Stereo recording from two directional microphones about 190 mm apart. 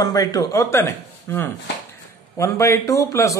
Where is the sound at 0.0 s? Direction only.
20° left (ahead or behind).